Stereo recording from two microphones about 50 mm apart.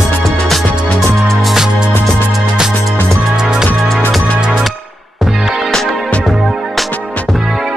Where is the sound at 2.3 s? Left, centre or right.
Centre.